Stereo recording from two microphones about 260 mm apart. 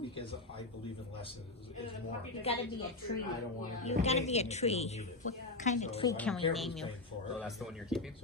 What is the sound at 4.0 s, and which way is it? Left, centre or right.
A woman's voice, left.